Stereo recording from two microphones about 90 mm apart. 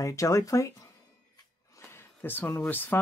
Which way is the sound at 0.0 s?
35° left (ahead or behind).